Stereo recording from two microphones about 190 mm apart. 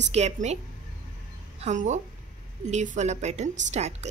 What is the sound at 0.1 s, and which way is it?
Speech, 35° right (ahead or behind).